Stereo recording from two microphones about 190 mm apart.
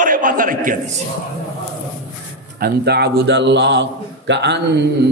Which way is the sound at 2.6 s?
60° right (ahead or behind).